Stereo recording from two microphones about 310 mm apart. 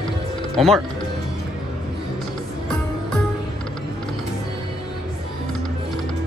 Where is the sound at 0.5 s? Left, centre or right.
Centre.